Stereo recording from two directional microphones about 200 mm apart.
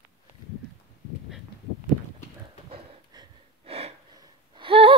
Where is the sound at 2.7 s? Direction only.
25° right (ahead or behind).